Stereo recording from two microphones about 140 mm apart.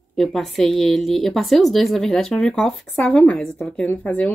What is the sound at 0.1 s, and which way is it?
Speech, 5° left (ahead or behind).